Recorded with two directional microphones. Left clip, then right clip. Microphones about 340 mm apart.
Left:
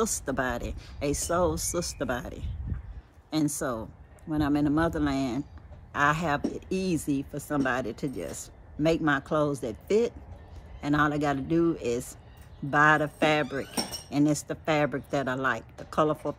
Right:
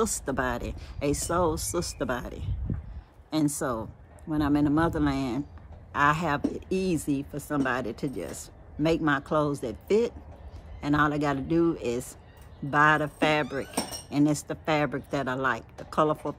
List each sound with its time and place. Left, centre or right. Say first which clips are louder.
0.0 s speech: right 1 dB; centre